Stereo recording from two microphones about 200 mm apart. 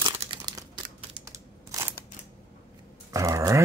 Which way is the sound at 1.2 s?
15° right (ahead or behind).